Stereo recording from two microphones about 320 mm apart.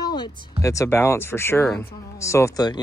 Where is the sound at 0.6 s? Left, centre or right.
Centre.